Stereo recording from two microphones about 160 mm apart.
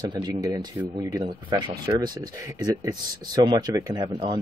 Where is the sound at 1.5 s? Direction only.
30° right (ahead or behind).